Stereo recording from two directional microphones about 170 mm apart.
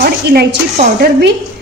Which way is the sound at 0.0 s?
65° right (ahead or behind).